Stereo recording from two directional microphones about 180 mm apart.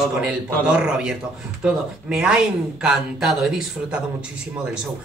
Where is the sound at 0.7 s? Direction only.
5° right (ahead or behind).